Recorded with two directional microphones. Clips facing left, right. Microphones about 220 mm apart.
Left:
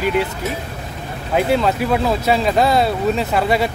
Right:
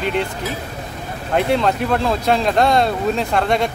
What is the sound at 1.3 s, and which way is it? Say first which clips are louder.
Speech: left 1 dB; 5° left (ahead or behind).